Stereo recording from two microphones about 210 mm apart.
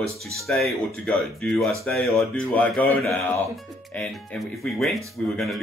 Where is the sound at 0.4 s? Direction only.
Centre (ahead or behind).